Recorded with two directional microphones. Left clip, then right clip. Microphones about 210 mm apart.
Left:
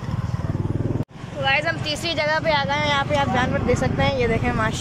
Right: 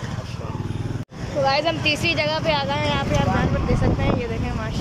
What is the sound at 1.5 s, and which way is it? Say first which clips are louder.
Speech: even; 15° right (ahead or behind).